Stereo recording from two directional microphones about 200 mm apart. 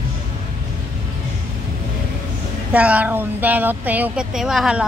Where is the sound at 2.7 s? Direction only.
5° right (ahead or behind).